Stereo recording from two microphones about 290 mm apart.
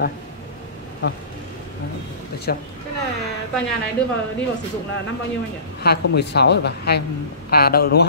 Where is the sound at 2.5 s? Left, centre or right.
Left.